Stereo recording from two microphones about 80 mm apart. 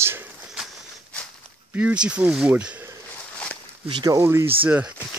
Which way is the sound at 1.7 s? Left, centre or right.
Centre.